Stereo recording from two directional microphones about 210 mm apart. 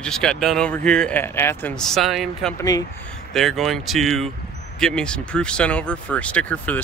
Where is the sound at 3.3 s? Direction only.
Centre (ahead or behind).